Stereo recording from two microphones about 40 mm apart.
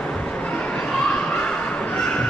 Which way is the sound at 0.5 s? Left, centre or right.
Left.